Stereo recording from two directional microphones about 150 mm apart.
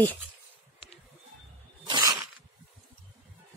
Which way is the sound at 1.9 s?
25° right (ahead or behind).